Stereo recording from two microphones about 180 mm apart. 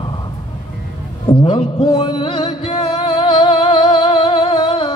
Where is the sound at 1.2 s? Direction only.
25° left (ahead or behind).